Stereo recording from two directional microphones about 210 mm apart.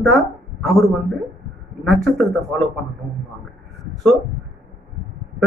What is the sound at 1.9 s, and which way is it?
Speech, centre (ahead or behind).